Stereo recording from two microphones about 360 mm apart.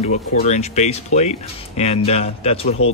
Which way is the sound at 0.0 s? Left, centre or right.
Centre.